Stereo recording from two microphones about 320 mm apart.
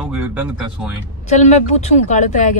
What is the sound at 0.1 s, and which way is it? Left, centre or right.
Speech, centre.